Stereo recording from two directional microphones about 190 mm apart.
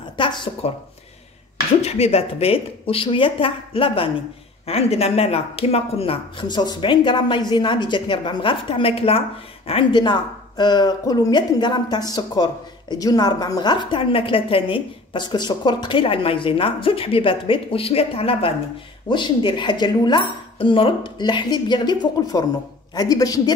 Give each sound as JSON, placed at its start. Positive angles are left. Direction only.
{"t": 0.2, "sound": "a woman's voice", "side_deg": 25}
{"t": 1.8, "sound": "a woman's voice", "side_deg": 35}